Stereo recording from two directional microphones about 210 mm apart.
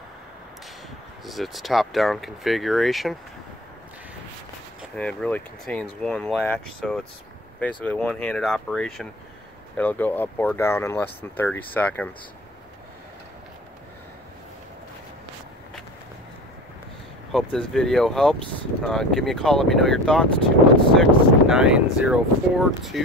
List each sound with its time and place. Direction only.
1.2 s speech: centre (ahead or behind)
4.9 s speech: 5° left (ahead or behind)
17.3 s speech: centre (ahead or behind)